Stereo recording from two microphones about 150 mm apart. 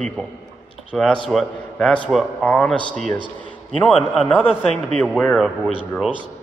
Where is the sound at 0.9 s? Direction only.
Centre (ahead or behind).